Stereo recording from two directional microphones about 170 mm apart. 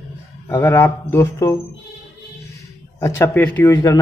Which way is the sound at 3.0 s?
15° left (ahead or behind).